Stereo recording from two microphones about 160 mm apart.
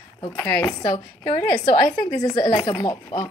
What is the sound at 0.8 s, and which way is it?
A woman's voice, 30° left (ahead or behind).